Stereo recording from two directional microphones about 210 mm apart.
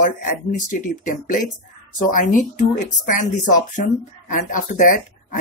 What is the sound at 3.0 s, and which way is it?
Speech, 40° left (ahead or behind).